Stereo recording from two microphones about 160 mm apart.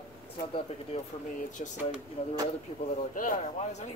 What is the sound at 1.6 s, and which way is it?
Speech, 50° left (ahead or behind).